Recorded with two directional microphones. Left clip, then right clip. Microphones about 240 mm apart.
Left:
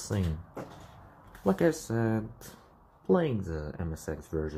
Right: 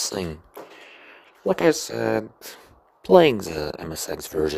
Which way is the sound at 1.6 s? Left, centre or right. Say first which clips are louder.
Right 9 dB; right.